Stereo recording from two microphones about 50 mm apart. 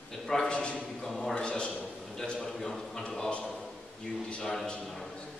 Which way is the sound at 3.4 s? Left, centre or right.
Centre.